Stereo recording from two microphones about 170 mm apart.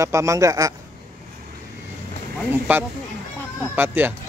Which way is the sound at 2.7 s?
10° right (ahead or behind).